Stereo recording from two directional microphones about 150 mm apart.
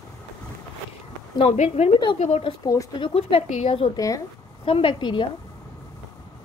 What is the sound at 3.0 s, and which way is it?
Speech, 35° left (ahead or behind).